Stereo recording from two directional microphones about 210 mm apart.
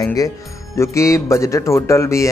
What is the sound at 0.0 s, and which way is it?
A man's voice, 15° left (ahead or behind).